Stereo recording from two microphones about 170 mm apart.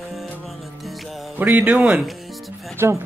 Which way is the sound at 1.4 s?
10° right (ahead or behind).